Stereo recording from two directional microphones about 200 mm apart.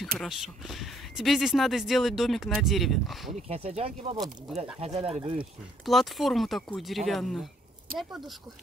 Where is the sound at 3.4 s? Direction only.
30° right (ahead or behind).